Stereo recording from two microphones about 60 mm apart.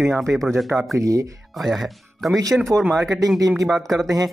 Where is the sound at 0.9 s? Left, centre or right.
Right.